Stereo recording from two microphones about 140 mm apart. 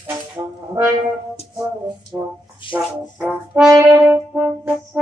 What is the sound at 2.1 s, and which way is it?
Speech, 25° right (ahead or behind).